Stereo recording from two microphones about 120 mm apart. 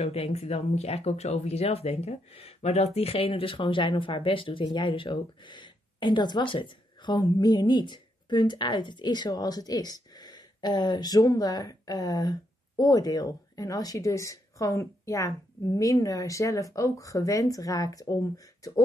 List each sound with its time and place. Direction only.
0.0 s speech: 60° left (ahead or behind); by 18.8 s 25° left (ahead or behind)